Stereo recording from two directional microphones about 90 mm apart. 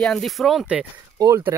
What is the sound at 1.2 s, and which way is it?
Speech, 35° right (ahead or behind).